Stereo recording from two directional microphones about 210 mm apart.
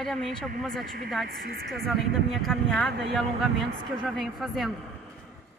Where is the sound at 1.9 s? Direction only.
Centre (ahead or behind).